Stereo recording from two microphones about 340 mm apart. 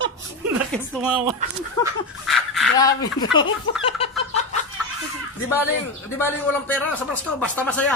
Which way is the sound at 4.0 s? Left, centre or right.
Centre.